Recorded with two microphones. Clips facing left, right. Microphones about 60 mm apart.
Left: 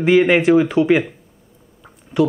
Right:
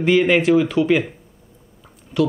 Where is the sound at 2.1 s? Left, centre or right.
Centre.